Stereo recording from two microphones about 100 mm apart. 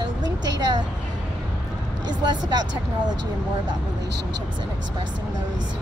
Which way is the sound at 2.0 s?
45° right (ahead or behind).